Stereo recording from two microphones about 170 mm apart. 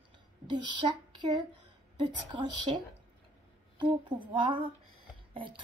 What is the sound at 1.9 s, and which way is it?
Speech, 30° right (ahead or behind).